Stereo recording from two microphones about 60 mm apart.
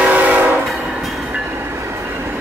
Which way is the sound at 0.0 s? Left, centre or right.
Right.